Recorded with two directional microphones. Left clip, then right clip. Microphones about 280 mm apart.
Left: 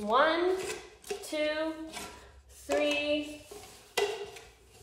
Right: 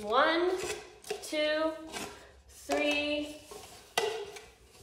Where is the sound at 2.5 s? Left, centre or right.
Centre.